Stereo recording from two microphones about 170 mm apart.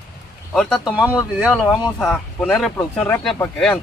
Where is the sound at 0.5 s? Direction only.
Centre (ahead or behind).